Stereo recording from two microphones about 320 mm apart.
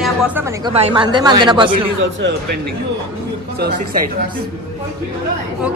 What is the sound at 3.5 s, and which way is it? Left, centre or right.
Speech, right.